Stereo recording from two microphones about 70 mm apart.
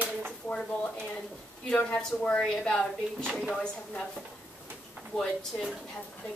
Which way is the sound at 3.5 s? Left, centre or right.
Centre.